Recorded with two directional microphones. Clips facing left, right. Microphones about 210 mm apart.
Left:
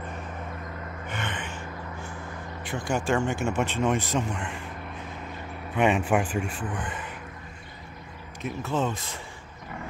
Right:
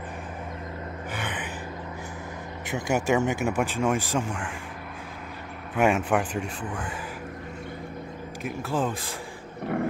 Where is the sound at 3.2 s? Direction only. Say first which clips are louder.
Right 2 dB; 15° right (ahead or behind).